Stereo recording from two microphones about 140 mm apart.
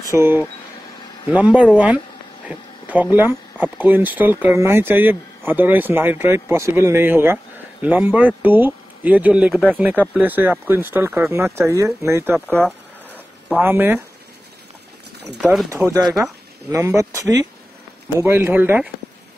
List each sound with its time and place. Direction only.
0.1 s speech: 15° right (ahead or behind)
12.4 s a sound: 5° left (ahead or behind)
13.5 s speech: 15° right (ahead or behind)
15.7 s speech: 20° right (ahead or behind)